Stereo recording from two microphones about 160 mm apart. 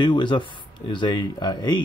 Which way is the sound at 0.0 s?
30° left (ahead or behind).